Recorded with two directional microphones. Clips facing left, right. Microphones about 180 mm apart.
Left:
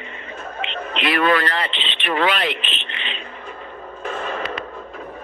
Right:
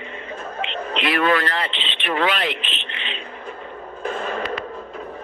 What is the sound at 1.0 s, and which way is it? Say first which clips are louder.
A man's voice: left 1 dB; 75° left (ahead or behind).